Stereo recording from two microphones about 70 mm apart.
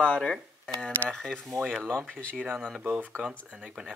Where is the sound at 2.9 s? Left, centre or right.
Right.